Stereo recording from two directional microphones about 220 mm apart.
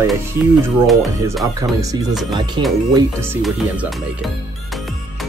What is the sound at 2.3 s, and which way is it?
Speech, 20° right (ahead or behind).